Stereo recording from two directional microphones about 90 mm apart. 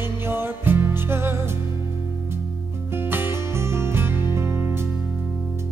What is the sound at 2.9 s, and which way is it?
Music, 25° right (ahead or behind).